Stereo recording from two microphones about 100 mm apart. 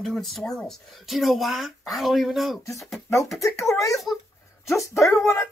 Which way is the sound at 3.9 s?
Centre (ahead or behind).